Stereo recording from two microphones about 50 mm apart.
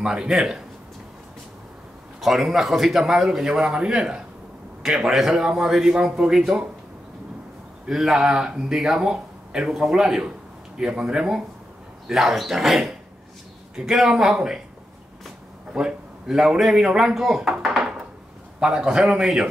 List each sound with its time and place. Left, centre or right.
0.0 s a man's voice: centre
2.1 s a man's voice: centre
7.8 s a man's voice: centre
8.3 s a man's voice: centre
15.7 s a man's voice: centre
18.6 s a man's voice: centre